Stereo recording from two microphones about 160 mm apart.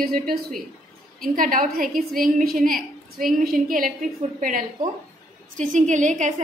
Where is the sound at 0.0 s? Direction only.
65° right (ahead or behind).